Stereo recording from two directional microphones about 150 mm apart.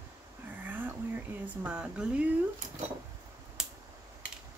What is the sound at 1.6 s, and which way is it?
Speech, 5° right (ahead or behind).